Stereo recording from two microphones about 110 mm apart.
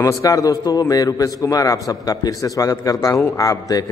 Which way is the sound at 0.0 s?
30° left (ahead or behind).